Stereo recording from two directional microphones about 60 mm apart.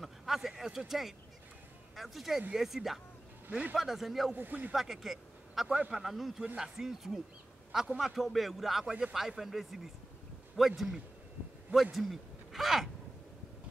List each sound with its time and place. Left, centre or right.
0.0 s a sound: centre
2.0 s speech: centre
4.3 s speech: right
4.7 s speech: centre
5.8 s speech: centre
6.0 s a man's voice: centre